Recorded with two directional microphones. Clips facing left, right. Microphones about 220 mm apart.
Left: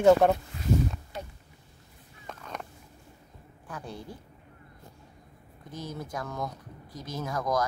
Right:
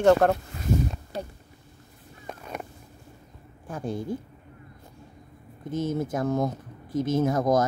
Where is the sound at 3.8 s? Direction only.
50° right (ahead or behind).